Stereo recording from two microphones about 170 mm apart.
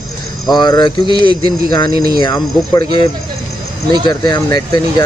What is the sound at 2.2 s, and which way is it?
Speech, 20° left (ahead or behind).